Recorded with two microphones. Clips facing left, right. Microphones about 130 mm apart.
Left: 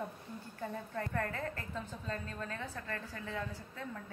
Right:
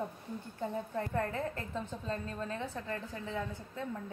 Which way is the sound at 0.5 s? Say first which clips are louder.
Right 4 dB; 20° right (ahead or behind).